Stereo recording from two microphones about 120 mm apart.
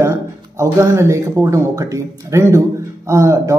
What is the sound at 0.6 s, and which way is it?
Speech, 25° right (ahead or behind).